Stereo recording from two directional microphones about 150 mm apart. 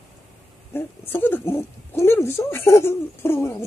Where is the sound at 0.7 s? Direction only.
15° left (ahead or behind).